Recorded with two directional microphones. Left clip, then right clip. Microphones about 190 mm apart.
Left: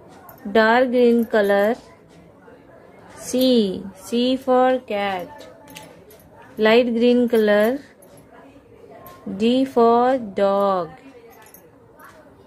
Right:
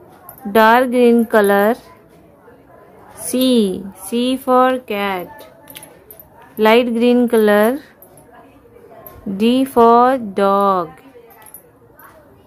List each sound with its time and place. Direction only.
0.5 s a woman's voice: 25° right (ahead or behind)
3.2 s a woman's voice: 20° right (ahead or behind)
9.4 s a woman's voice: 20° right (ahead or behind)